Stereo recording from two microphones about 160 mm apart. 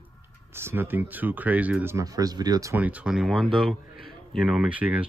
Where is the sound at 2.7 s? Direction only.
10° right (ahead or behind).